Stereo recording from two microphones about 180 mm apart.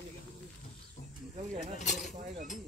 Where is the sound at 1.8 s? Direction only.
45° left (ahead or behind).